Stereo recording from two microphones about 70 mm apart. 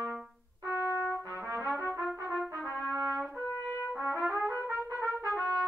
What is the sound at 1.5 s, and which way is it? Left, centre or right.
Trumpet, right.